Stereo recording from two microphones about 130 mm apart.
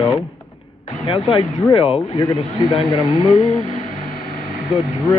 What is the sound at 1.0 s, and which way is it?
A man's voice, 40° left (ahead or behind).